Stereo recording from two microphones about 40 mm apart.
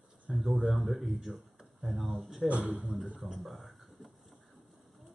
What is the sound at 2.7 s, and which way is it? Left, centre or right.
Speech, centre.